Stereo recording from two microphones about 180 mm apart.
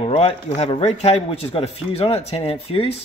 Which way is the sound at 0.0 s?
35° left (ahead or behind).